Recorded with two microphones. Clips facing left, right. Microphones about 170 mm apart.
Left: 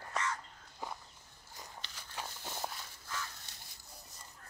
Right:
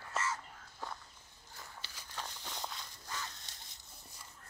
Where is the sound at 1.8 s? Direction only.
10° right (ahead or behind).